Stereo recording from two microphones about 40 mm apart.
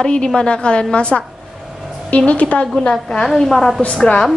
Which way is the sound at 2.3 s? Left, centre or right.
Left.